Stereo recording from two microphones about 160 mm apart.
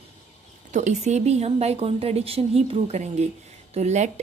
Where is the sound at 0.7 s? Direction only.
50° right (ahead or behind).